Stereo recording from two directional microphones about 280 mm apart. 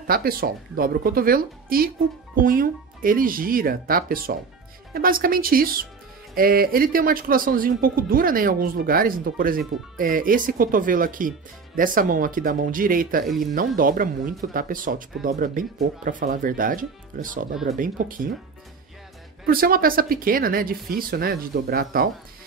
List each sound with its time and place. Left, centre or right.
0.0 s speech: right
19.4 s speech: right